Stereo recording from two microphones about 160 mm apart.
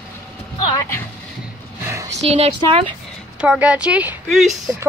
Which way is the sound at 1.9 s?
20° right (ahead or behind).